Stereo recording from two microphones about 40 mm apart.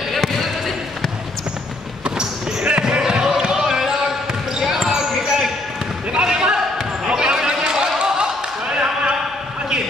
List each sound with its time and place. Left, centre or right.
0.1 s basketball bounce: centre
2.0 s basketball bounce: right